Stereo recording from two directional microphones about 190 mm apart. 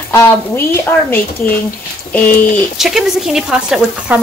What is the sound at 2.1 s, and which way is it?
Speech, 5° left (ahead or behind).